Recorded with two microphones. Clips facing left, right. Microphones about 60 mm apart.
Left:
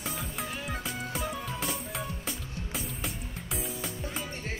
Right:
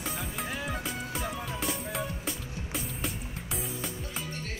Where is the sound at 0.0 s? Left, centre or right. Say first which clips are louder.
Right 1 dB; centre.